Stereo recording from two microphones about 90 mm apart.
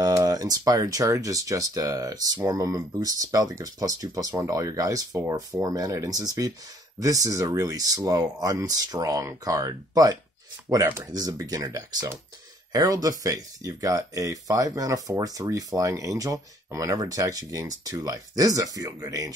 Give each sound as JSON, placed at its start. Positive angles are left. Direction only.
{"t": 0.2, "sound": "speech", "side_deg": -45}